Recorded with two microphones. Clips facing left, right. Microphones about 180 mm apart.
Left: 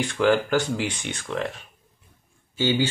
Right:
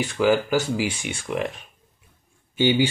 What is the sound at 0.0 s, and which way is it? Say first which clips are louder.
Speech: right 1 dB; 5° right (ahead or behind).